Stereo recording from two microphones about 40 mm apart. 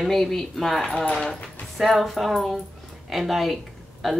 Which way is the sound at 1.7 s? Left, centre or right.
Centre.